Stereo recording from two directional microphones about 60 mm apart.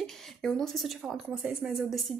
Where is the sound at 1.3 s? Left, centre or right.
Centre.